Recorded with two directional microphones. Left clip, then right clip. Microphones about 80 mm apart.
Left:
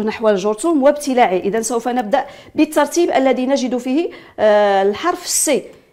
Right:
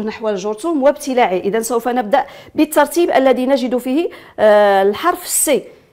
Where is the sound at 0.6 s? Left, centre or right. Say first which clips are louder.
Even; centre.